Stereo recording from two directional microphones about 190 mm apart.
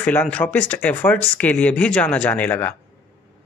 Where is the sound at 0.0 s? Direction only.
10° left (ahead or behind).